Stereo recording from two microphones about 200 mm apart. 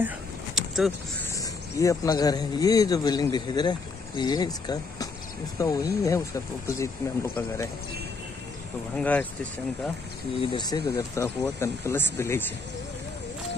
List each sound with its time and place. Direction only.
0.6 s vehicle: centre (ahead or behind)
1.3 s a man's voice: 15° left (ahead or behind)
8.9 s speech: 5° left (ahead or behind)
10.4 s speech: 20° left (ahead or behind)